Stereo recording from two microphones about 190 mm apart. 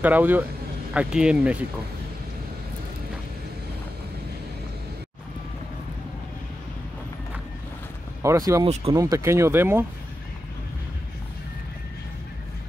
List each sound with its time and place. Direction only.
0.0 s speech: 10° right (ahead or behind)
8.2 s speech: 15° right (ahead or behind)